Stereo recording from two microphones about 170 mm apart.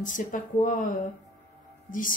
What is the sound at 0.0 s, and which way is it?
Speech, 50° left (ahead or behind).